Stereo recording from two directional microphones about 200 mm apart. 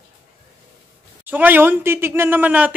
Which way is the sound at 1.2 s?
10° right (ahead or behind).